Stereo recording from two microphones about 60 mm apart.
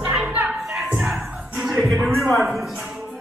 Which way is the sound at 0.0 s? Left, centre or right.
Centre.